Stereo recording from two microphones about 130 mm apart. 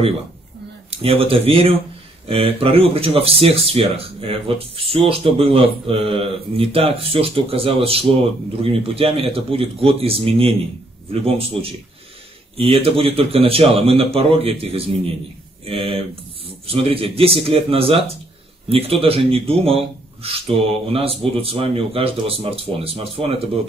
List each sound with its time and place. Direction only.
0.8 s speech: 50° right (ahead or behind)
15.6 s a sound: 45° right (ahead or behind)
16.6 s speech: 50° right (ahead or behind)